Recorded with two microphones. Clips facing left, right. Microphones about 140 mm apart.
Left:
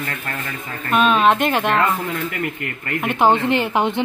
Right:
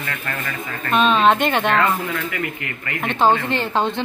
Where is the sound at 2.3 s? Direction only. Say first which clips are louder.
Left 1 dB; 50° left (ahead or behind).